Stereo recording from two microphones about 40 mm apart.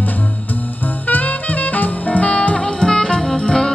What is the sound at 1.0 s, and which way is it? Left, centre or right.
Music, left.